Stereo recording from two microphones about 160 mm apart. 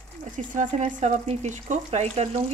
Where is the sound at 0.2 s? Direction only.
50° right (ahead or behind).